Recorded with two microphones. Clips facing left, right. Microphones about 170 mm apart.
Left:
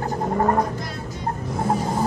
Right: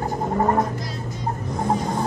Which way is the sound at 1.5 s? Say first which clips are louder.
Even; 5° left (ahead or behind).